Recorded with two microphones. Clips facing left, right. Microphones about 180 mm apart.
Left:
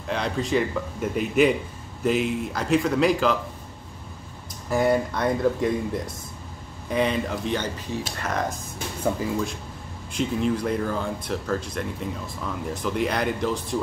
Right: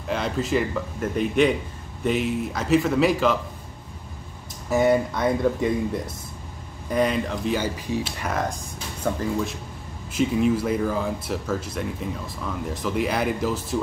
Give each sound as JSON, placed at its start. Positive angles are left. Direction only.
{"t": 0.0, "sound": "speech", "side_deg": 0}
{"t": 4.6, "sound": "speech", "side_deg": 0}